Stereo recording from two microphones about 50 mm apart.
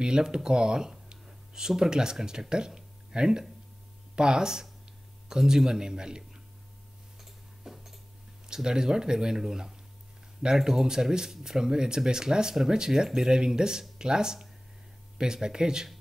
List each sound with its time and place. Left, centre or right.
0.0 s speech: centre
7.2 s tick-tock: centre
8.5 s speech: centre